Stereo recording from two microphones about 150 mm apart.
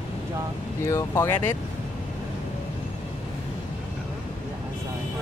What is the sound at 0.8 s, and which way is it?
Speech, 20° left (ahead or behind).